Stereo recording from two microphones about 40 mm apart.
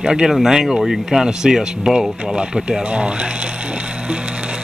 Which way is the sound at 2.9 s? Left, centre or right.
Right.